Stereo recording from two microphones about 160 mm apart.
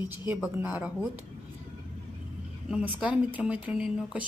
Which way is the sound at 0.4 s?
5° right (ahead or behind).